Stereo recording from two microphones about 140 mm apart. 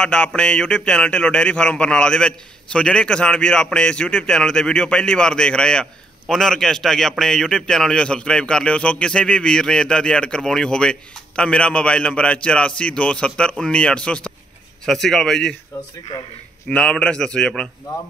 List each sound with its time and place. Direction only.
0.0 s a man's voice: 5° left (ahead or behind)
15.7 s speech: 25° left (ahead or behind)
16.6 s a man's voice: 5° left (ahead or behind)